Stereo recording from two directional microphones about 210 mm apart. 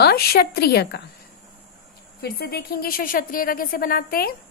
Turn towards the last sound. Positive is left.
turn(degrees=45)  # may be behind; listen again after turning